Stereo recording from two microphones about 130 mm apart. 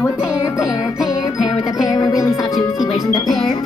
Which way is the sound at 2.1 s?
25° left (ahead or behind).